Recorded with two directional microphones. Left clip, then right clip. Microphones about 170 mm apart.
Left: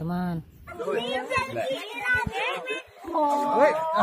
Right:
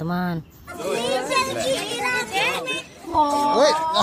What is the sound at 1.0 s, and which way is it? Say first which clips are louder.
Chatter: right 9 dB; 90° right.